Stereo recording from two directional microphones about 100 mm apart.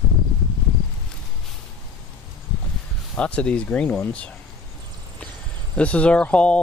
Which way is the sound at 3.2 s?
10° left (ahead or behind).